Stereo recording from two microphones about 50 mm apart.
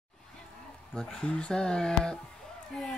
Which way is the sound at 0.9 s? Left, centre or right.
Centre.